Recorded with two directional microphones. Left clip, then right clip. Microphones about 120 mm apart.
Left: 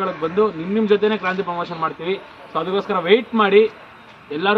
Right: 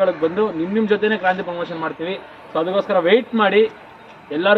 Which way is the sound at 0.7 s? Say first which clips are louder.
Left 1 dB; 30° left (ahead or behind).